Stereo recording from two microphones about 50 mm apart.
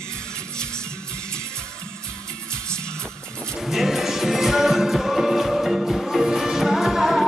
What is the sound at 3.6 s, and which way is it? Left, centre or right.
Music, centre.